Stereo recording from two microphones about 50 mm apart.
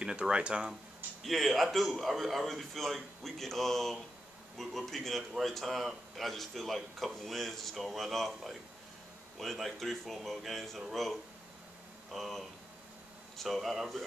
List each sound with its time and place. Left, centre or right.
0.0 s speech: centre
1.2 s speech: centre